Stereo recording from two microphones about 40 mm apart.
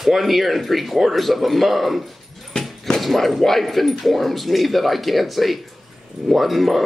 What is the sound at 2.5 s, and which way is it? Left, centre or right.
Dog, left.